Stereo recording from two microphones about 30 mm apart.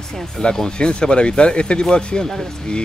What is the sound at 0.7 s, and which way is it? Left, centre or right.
Speech, left.